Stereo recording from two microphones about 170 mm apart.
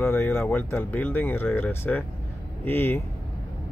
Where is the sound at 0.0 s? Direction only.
15° left (ahead or behind).